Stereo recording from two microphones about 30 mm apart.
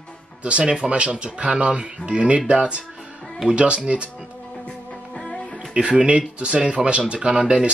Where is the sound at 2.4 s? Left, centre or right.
Right.